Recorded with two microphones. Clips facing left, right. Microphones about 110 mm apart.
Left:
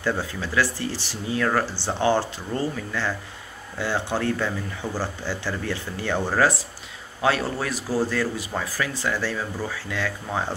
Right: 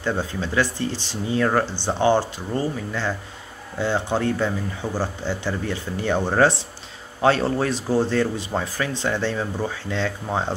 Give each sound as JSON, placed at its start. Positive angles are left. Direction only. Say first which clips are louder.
{"t": 0.0, "sound": "speech", "louder": "right 2 dB", "side_deg": -20}